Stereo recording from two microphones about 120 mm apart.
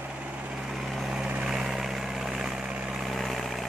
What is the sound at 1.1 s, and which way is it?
Vehicle, 5° right (ahead or behind).